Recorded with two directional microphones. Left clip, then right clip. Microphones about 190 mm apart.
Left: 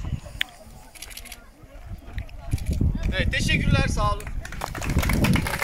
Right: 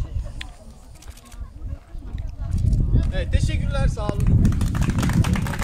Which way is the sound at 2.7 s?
45° right (ahead or behind).